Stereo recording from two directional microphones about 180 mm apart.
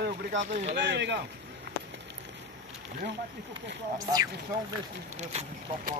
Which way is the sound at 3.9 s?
20° right (ahead or behind).